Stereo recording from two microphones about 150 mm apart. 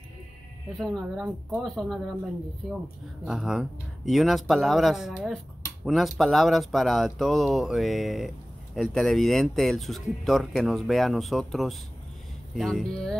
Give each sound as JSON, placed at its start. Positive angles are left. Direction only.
{"t": 0.7, "sound": "speech", "side_deg": 0}
{"t": 3.3, "sound": "speech", "side_deg": -5}